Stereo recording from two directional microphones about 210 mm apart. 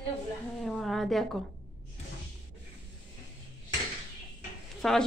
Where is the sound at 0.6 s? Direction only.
Centre (ahead or behind).